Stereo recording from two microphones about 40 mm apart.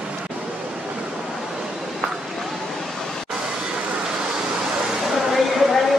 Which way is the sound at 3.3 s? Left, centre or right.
Right.